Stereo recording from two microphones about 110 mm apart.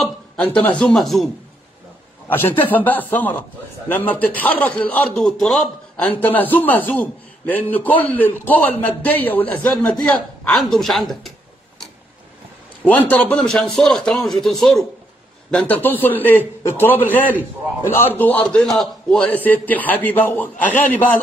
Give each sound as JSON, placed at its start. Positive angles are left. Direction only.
{"t": 0.4, "sound": "speech", "side_deg": 10}
{"t": 2.2, "sound": "a man's voice", "side_deg": 20}
{"t": 5.2, "sound": "speech", "side_deg": 0}
{"t": 6.2, "sound": "a man's voice", "side_deg": 15}
{"t": 12.8, "sound": "speech", "side_deg": 15}
{"t": 15.5, "sound": "a man's voice", "side_deg": 15}